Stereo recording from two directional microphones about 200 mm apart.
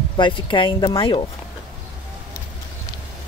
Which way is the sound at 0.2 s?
25° left (ahead or behind).